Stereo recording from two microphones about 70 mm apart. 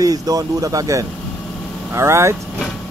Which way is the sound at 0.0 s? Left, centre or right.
Right.